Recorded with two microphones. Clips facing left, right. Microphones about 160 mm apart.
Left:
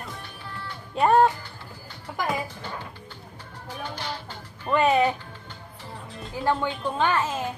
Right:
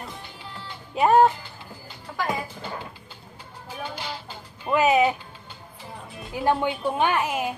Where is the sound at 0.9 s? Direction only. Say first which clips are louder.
Right 1 dB; 5° right (ahead or behind).